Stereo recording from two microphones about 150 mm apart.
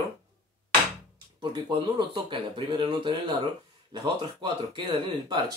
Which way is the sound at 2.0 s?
35° right (ahead or behind).